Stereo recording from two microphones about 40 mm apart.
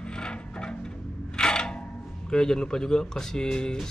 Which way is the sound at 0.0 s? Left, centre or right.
Left.